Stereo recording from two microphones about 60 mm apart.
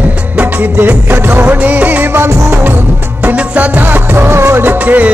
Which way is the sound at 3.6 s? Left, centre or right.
Right.